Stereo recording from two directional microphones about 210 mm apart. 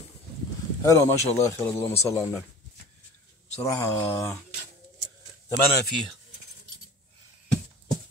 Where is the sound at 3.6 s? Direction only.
15° left (ahead or behind).